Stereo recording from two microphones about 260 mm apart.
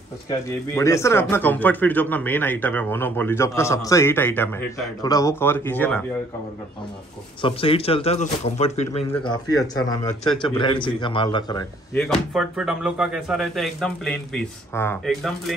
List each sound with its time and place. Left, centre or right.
0.5 s speech: centre
7.4 s speech: left
12.0 s speech: centre